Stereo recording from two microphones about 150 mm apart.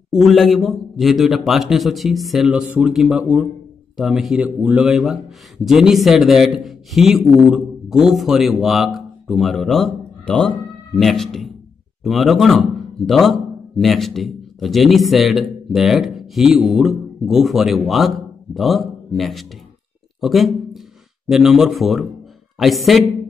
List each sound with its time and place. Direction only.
0.1 s a man's voice: centre (ahead or behind)
20.2 s a sound: centre (ahead or behind)
21.3 s a man's voice: 5° right (ahead or behind)